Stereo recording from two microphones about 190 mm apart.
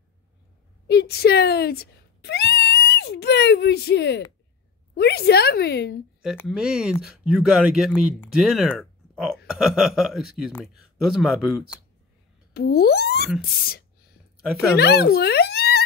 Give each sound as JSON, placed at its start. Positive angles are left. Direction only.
{"t": 0.8, "sound": "a woman's voice", "side_deg": 60}
{"t": 6.2, "sound": "speech", "side_deg": 0}
{"t": 12.5, "sound": "a sound", "side_deg": 55}
{"t": 13.7, "sound": "whispering", "side_deg": 55}
{"t": 14.8, "sound": "speech", "side_deg": 60}